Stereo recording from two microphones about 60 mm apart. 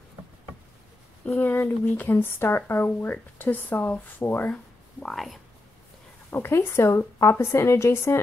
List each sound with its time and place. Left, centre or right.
1.4 s speech: left
5.0 s speech: centre
6.3 s a woman's voice: left